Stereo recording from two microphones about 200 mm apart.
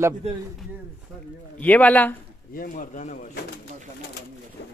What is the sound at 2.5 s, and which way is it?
Speech, 45° left (ahead or behind).